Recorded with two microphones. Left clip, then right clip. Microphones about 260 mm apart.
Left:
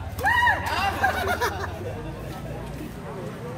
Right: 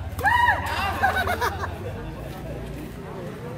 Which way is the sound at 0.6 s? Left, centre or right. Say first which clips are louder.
Left 1 dB; centre.